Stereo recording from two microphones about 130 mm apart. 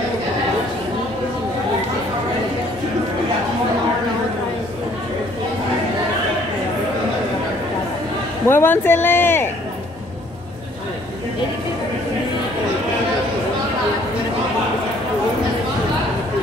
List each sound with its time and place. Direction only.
8.5 s a woman's voice: 20° left (ahead or behind)